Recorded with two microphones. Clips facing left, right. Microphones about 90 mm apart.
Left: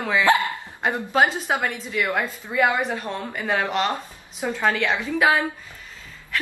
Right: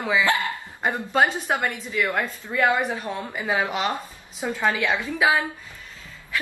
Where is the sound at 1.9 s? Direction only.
15° left (ahead or behind).